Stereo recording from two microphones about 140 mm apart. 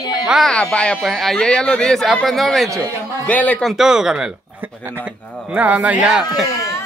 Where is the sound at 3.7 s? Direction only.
5° right (ahead or behind).